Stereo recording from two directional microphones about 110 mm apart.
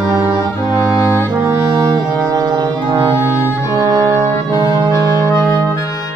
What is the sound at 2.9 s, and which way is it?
Music, 25° right (ahead or behind).